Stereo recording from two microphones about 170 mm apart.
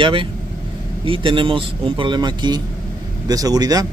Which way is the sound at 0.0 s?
30° right (ahead or behind).